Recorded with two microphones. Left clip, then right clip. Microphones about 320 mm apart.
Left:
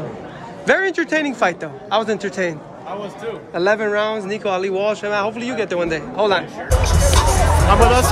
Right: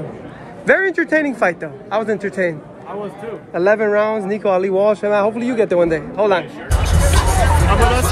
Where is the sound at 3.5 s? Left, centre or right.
Centre.